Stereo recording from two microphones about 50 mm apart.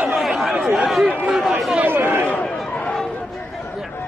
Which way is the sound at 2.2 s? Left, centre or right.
Left.